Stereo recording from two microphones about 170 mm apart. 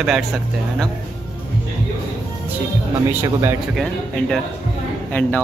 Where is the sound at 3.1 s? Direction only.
15° right (ahead or behind).